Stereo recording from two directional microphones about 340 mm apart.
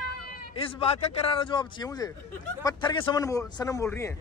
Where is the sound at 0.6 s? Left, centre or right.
Centre.